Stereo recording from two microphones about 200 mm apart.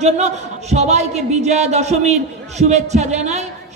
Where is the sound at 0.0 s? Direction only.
35° right (ahead or behind).